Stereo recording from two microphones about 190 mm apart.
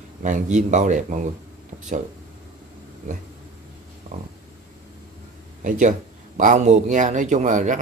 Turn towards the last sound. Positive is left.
turn(degrees=-40)  # may be behind; listen again after turning